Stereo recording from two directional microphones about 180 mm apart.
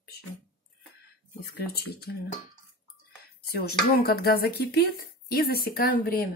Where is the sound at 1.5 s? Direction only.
60° left (ahead or behind).